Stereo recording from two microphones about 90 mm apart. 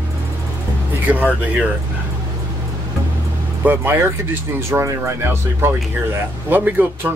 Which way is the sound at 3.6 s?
25° right (ahead or behind).